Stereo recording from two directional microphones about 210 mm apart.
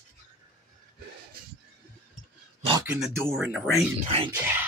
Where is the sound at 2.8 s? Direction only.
Centre (ahead or behind).